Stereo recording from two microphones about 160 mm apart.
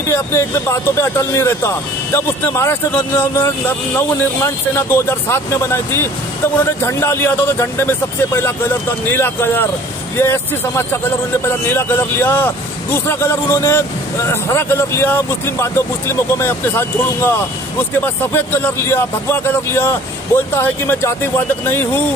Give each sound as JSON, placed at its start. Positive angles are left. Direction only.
{"t": 0.1, "sound": "speech", "side_deg": 15}
{"t": 4.1, "sound": "speech", "side_deg": 20}